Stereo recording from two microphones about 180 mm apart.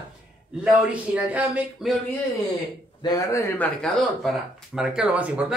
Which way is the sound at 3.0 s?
20° left (ahead or behind).